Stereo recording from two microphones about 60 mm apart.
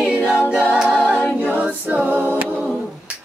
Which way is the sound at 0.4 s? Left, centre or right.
Centre.